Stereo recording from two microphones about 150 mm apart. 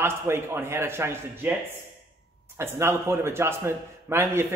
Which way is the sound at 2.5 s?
15° right (ahead or behind).